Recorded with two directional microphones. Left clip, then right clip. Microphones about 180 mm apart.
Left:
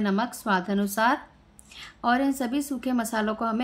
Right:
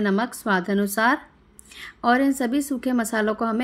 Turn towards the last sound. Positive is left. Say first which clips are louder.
# right 4 dB
turn(degrees=-15)  # may be behind; listen again after turning